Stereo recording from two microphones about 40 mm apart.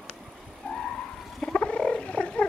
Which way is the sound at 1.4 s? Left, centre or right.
Left.